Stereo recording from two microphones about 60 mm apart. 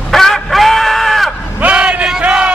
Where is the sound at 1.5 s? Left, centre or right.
Right.